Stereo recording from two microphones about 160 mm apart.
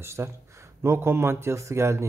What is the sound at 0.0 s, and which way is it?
Speech, 15° right (ahead or behind).